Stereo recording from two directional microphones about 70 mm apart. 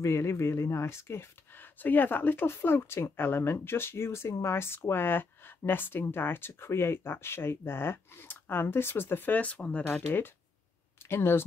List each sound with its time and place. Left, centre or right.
0.0 s speech: left
1.8 s speech: left
11.1 s speech: left